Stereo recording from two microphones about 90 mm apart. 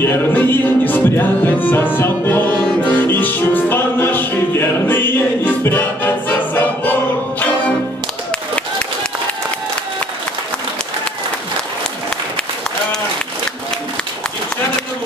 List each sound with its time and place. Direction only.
0.0 s music: 25° left (ahead or behind)